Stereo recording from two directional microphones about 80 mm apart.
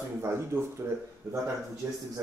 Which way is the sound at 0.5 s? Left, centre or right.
Right.